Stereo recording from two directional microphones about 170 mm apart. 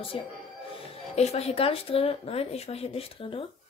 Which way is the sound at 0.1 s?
30° left (ahead or behind).